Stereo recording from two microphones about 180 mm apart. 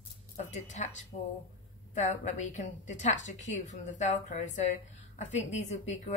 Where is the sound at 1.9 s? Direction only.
40° left (ahead or behind).